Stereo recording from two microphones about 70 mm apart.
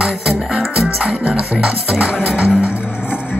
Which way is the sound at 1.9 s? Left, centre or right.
Centre.